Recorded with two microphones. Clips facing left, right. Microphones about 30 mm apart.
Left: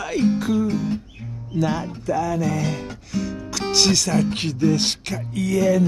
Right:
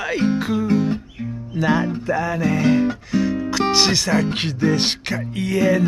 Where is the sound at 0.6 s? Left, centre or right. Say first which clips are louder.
Right 4 dB; right.